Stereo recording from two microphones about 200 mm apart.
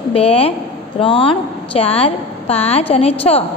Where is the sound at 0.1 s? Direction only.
30° left (ahead or behind).